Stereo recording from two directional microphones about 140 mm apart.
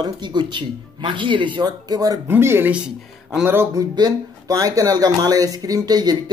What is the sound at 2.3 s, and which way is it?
Speech, 15° right (ahead or behind).